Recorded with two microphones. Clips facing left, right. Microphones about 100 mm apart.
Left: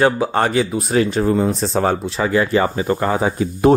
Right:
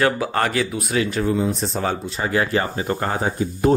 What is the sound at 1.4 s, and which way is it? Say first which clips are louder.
Speech: left 4 dB; 90° left.